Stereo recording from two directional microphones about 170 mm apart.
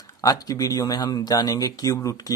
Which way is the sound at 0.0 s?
20° left (ahead or behind).